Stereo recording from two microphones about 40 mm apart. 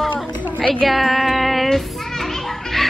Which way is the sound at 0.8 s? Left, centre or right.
Centre.